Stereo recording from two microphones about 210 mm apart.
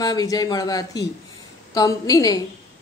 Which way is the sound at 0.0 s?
15° left (ahead or behind).